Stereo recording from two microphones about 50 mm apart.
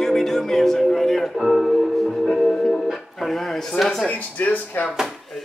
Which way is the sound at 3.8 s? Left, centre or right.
Centre.